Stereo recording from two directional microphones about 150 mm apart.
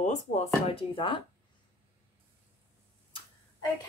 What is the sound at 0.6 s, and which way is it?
Speech, 35° left (ahead or behind).